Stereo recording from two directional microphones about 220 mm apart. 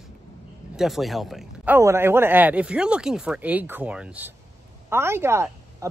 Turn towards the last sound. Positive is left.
turn(degrees=-10)  # may be behind; listen again after turning